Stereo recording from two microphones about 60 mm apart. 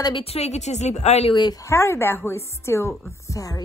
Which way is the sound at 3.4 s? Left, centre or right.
Left.